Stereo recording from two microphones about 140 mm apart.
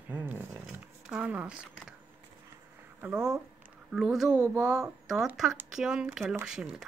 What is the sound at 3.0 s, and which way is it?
Speech, 5° right (ahead or behind).